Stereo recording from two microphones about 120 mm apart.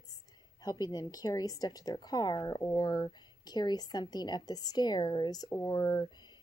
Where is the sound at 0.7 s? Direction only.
35° left (ahead or behind).